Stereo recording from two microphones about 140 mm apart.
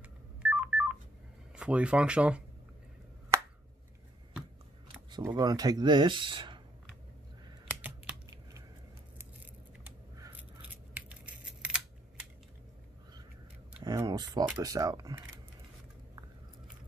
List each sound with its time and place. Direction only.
0.0 s telephone dialing: 10° right (ahead or behind)
1.6 s speech: 10° right (ahead or behind)
3.3 s a sound: 20° right (ahead or behind)
5.1 s speech: 30° right (ahead or behind)
8.1 s computer keyboard: 5° right (ahead or behind)
10.3 s scissors: 10° right (ahead or behind)
13.9 s a sound: 30° right (ahead or behind)
14.6 s speech: 25° right (ahead or behind)